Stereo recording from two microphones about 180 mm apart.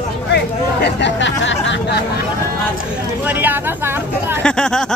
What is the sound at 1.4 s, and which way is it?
Speech, 90° left.